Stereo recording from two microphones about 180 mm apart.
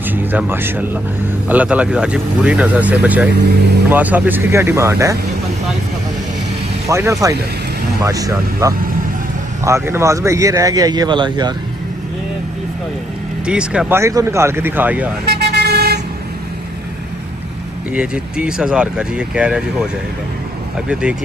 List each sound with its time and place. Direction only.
0.0 s speech: 10° right (ahead or behind)
6.9 s a man's voice: 15° right (ahead or behind)
13.5 s speech: 5° right (ahead or behind)
15.2 s vehicle: 60° right (ahead or behind)
17.9 s speech: 5° right (ahead or behind)
20.9 s speech: 5° right (ahead or behind)